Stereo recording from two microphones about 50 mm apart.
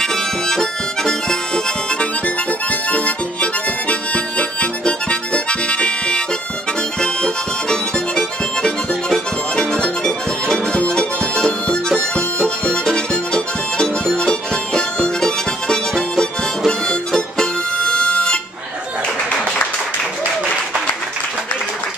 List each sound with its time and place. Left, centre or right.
0.0 s harmonica: centre; by 3.4 s left
3.9 s music: left
10.9 s music: centre